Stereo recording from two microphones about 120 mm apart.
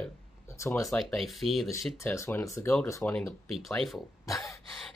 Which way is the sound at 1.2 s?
Centre (ahead or behind).